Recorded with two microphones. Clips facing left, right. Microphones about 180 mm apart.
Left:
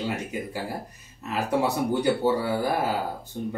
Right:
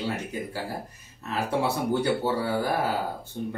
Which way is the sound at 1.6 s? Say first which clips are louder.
Left 1 dB; 15° left (ahead or behind).